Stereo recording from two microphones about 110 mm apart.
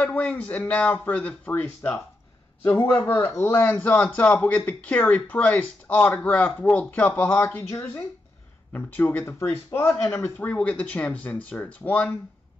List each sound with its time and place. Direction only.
0.0 s a man's voice: 15° left (ahead or behind); by 8.1 s 30° left (ahead or behind)
8.7 s a man's voice: 15° left (ahead or behind)